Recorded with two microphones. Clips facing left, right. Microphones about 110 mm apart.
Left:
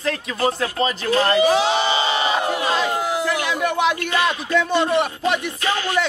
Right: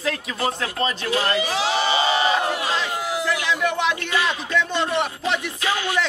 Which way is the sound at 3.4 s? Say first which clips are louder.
Left 2 dB; 10° left (ahead or behind).